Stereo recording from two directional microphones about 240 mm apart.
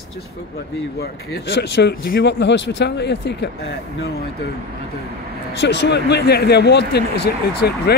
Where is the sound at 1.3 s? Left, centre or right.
Left.